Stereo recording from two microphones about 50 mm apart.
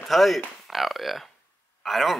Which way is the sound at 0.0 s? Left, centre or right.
Centre.